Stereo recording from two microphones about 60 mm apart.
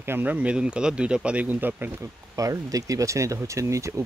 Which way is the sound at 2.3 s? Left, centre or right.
Right.